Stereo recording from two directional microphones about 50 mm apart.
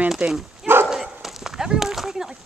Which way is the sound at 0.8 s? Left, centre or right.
Centre.